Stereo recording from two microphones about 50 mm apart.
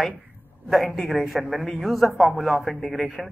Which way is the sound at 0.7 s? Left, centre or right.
Centre.